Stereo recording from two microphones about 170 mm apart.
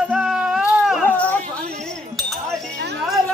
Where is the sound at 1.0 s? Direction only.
10° left (ahead or behind).